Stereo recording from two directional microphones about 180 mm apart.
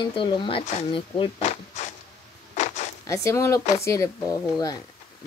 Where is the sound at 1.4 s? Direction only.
40° left (ahead or behind).